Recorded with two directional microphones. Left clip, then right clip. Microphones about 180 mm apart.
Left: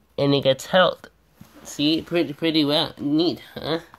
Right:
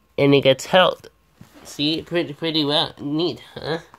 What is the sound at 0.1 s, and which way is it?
Speech, 20° right (ahead or behind).